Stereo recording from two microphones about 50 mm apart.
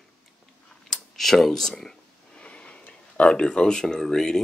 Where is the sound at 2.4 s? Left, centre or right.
Left.